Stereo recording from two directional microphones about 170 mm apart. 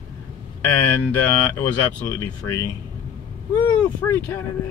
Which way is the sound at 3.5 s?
25° left (ahead or behind).